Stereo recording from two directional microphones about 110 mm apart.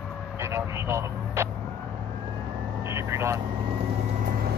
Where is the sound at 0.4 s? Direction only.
25° right (ahead or behind).